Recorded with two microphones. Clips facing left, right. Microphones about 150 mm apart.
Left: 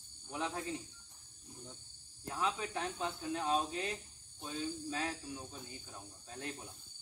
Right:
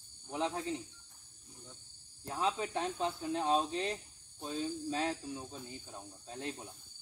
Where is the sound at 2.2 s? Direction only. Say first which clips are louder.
Right 3 dB; 25° right (ahead or behind).